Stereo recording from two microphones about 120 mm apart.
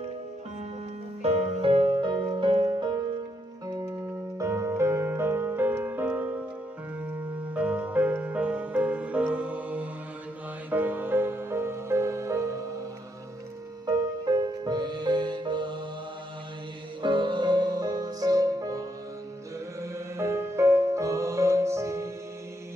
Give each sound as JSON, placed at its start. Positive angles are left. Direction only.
{"t": 1.2, "sound": "music", "side_deg": -55}
{"t": 7.5, "sound": "music", "side_deg": -10}
{"t": 13.8, "sound": "music", "side_deg": -35}
{"t": 17.0, "sound": "music", "side_deg": -40}